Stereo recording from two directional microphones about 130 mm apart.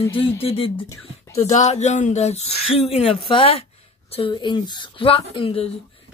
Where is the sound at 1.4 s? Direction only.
60° left (ahead or behind).